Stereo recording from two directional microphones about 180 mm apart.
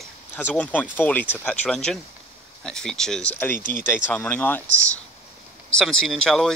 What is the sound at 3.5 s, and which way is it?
Speech, 50° left (ahead or behind).